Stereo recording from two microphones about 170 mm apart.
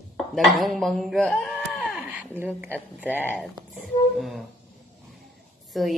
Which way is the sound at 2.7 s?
10° left (ahead or behind).